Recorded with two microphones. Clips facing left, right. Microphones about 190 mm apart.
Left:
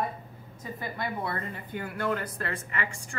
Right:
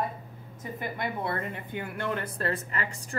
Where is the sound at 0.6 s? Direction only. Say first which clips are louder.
Right 1 dB; 20° right (ahead or behind).